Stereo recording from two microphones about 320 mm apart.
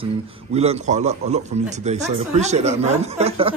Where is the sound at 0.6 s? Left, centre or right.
Right.